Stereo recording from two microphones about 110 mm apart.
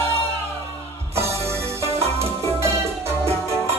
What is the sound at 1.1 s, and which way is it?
Music, 25° right (ahead or behind).